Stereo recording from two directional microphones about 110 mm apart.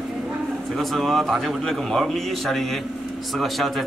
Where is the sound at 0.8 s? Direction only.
Centre (ahead or behind).